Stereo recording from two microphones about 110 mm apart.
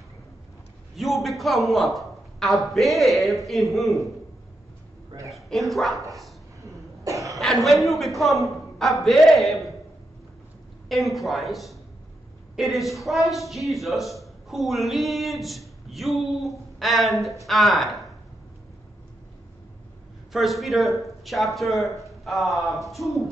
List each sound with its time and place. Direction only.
0.9 s a woman's voice: centre (ahead or behind)
5.3 s a woman's voice: centre (ahead or behind)
7.1 s cough: 30° right (ahead or behind)
7.3 s a woman's voice: centre (ahead or behind)
10.9 s a woman's voice: centre (ahead or behind)
20.3 s a woman's voice: centre (ahead or behind)